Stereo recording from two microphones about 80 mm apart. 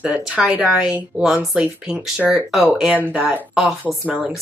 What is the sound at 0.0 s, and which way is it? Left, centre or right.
Speech, centre.